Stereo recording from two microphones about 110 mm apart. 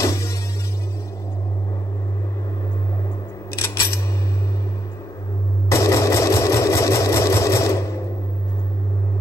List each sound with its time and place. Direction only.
0.0 s music: 30° left (ahead or behind)
3.5 s a sound: 25° left (ahead or behind)
5.7 s sewing machine: 30° left (ahead or behind)